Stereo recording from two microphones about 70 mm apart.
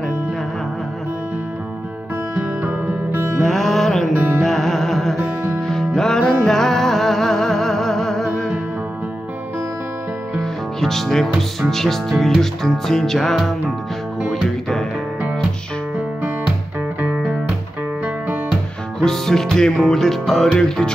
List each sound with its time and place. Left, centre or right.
2.4 s music: centre
3.1 s music: right
3.3 s music: centre
10.4 s music: centre
17.0 s music: right
18.9 s music: centre